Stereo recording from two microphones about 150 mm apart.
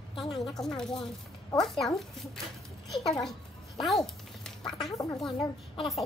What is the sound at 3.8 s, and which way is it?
Quack, centre (ahead or behind).